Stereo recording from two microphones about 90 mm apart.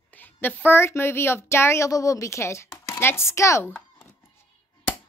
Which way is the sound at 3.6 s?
20° left (ahead or behind).